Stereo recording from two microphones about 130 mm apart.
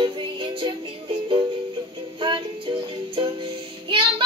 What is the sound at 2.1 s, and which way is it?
Music, 40° right (ahead or behind).